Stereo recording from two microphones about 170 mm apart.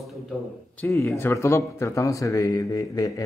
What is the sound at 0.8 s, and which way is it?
Speech, 15° left (ahead or behind).